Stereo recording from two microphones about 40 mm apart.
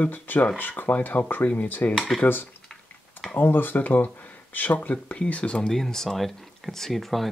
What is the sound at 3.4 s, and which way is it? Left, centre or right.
Speech, left.